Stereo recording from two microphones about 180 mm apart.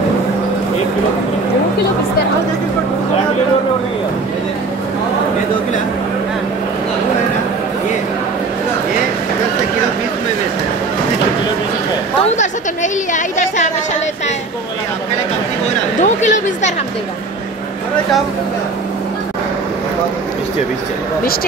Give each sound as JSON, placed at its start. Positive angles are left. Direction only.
{"t": 12.4, "sound": "a woman's voice", "side_deg": 45}
{"t": 16.0, "sound": "a woman's voice", "side_deg": 40}